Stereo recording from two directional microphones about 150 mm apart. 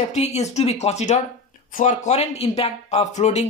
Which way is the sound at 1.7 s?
60° left (ahead or behind).